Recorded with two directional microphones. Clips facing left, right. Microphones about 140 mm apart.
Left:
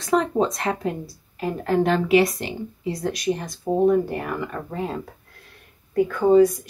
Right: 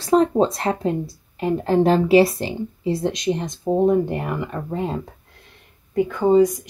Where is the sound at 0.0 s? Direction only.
35° right (ahead or behind).